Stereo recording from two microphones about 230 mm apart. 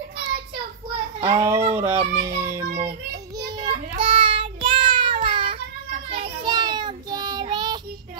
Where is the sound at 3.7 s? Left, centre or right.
Right.